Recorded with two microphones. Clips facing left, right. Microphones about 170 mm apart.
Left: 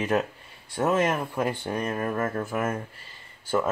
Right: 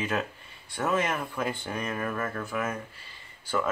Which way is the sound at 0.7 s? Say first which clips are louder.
Left 4 dB; 40° left (ahead or behind).